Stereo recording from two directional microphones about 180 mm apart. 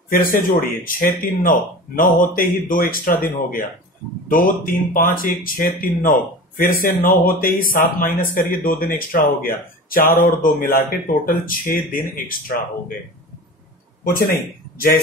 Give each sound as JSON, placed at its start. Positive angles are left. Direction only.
{"t": 0.1, "sound": "speech", "side_deg": 50}
{"t": 14.0, "sound": "speech", "side_deg": 55}